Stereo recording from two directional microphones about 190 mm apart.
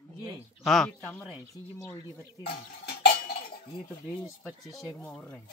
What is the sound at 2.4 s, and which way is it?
Dishes, 60° left (ahead or behind).